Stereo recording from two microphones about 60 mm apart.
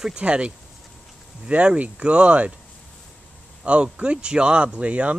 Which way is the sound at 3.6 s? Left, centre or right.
Centre.